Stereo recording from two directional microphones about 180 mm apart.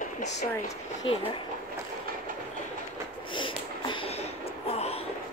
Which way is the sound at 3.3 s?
25° left (ahead or behind).